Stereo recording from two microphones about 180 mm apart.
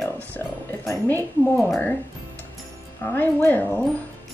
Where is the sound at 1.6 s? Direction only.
5° left (ahead or behind).